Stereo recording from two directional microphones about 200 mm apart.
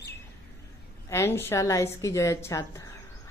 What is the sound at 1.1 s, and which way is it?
A woman's voice, 10° left (ahead or behind).